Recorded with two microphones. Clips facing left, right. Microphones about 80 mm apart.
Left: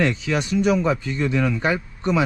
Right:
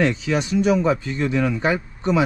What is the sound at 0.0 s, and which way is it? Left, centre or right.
Speech, right.